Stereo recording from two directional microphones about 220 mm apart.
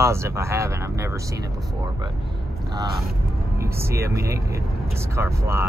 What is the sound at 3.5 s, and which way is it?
Speech, 10° right (ahead or behind).